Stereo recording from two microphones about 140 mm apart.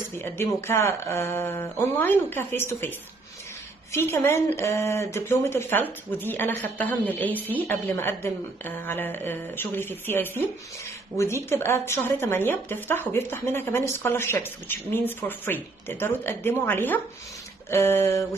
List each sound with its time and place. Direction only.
0.2 s a woman's voice: 15° left (ahead or behind)
3.9 s a woman's voice: 20° left (ahead or behind)